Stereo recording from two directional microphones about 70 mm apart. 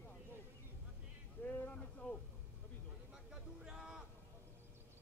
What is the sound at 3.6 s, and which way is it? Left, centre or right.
Vehicle, centre.